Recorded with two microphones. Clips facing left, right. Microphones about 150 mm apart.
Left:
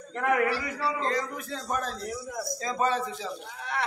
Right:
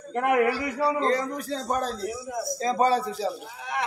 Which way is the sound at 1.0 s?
35° right (ahead or behind).